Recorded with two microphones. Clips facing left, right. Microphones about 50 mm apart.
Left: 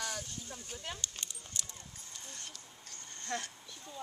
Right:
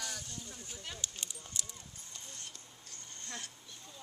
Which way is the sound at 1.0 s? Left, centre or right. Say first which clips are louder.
Even; centre.